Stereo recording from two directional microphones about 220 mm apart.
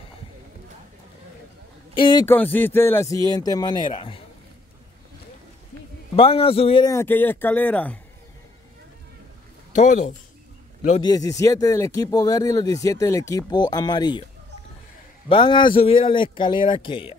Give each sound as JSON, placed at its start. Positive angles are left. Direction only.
{"t": 2.0, "sound": "speech", "side_deg": 20}
{"t": 2.2, "sound": "a man's voice", "side_deg": 10}
{"t": 6.1, "sound": "speech", "side_deg": 25}
{"t": 9.8, "sound": "speech", "side_deg": 30}
{"t": 11.0, "sound": "speech", "side_deg": 15}
{"t": 15.2, "sound": "a man's voice", "side_deg": 20}